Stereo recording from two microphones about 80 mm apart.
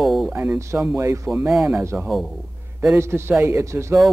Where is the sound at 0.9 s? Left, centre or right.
Right.